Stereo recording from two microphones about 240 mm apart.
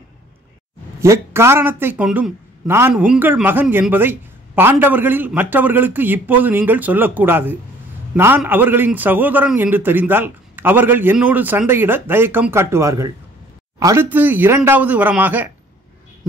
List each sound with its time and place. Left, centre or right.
1.0 s a man's voice: centre